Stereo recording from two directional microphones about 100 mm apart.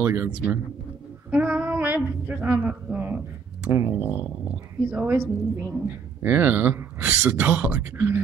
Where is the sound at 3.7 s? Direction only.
25° right (ahead or behind).